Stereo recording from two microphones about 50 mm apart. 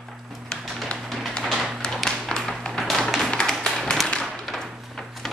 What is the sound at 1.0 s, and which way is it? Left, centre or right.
Music, centre.